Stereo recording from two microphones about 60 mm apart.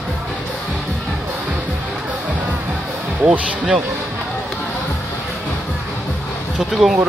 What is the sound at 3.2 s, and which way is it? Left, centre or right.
Speech, centre.